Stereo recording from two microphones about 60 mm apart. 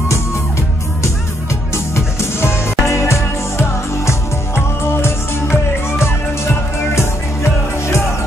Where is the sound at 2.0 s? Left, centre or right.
Left.